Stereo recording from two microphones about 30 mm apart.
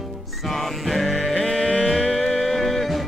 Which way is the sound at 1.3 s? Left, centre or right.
Left.